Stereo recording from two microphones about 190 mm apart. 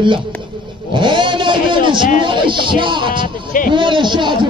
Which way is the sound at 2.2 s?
25° right (ahead or behind).